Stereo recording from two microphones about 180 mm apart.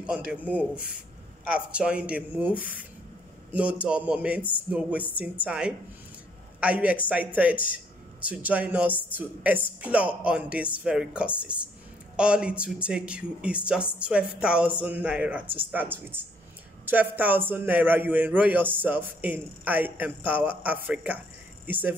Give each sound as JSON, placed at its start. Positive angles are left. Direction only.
{"t": 0.0, "sound": "a man's voice", "side_deg": -5}
{"t": 2.5, "sound": "speech", "side_deg": 50}
{"t": 3.5, "sound": "a man's voice", "side_deg": -10}